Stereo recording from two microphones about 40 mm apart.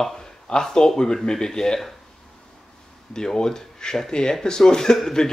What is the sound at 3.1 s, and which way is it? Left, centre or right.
Speech, centre.